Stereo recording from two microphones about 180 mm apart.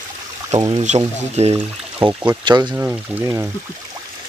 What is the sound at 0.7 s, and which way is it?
Speech, 35° right (ahead or behind).